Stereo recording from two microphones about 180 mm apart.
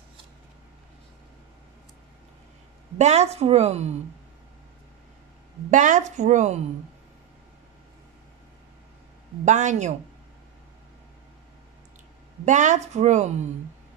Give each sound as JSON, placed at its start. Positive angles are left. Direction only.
{"t": 3.0, "sound": "a woman's voice", "side_deg": -40}
{"t": 5.7, "sound": "a woman's voice", "side_deg": -45}
{"t": 9.4, "sound": "a woman's voice", "side_deg": -40}
{"t": 12.4, "sound": "a woman's voice", "side_deg": -40}